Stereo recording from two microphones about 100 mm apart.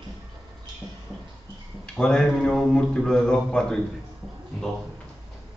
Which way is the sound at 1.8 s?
10° left (ahead or behind).